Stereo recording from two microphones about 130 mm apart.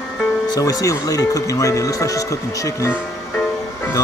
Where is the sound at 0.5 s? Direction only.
30° left (ahead or behind).